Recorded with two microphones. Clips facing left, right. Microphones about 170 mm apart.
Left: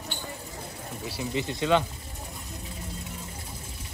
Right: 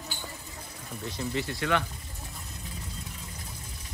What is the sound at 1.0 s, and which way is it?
Speech, 10° left (ahead or behind).